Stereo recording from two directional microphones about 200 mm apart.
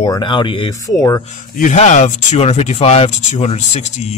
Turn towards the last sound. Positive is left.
turn(degrees=35)  # may be behind; listen again after turning